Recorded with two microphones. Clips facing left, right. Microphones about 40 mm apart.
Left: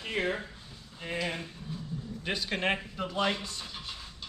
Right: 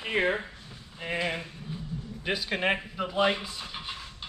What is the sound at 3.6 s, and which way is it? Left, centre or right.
Dishes, right.